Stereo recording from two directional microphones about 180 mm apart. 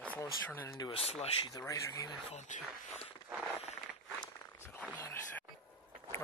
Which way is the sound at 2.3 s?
40° left (ahead or behind).